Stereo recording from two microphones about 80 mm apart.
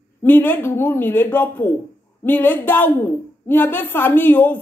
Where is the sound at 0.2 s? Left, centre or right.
Left.